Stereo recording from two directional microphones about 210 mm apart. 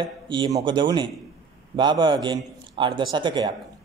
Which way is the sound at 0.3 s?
20° right (ahead or behind).